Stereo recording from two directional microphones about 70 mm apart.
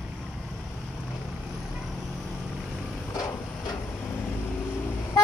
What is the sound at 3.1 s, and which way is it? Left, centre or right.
Vehicle, left.